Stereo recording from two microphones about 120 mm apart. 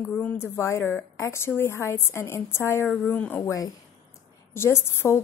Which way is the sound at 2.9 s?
10° left (ahead or behind).